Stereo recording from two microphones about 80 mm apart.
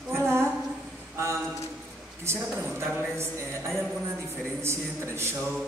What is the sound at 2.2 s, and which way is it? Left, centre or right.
A woman's voice, right.